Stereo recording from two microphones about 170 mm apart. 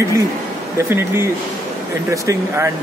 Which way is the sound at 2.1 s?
15° right (ahead or behind).